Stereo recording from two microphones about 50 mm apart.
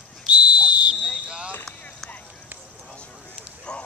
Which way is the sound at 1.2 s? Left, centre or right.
Centre.